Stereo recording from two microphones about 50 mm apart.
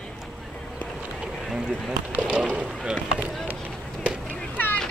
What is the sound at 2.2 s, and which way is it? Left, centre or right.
Speech, centre.